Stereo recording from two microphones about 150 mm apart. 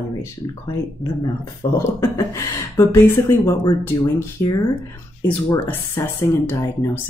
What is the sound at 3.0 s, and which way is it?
Speech, 15° left (ahead or behind).